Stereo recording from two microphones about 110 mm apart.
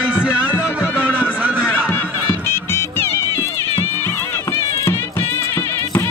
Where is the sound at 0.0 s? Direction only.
10° right (ahead or behind).